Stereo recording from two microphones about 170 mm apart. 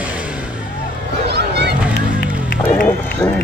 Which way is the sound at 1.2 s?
75° right (ahead or behind).